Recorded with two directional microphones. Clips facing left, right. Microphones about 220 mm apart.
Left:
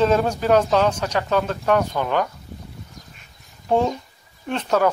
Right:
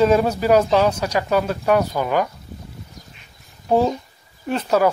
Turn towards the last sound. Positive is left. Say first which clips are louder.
# right 2 dB
turn(degrees=-10)  # may be behind; listen again after turning